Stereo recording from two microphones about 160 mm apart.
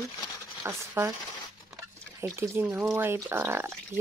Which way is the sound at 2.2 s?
15° right (ahead or behind).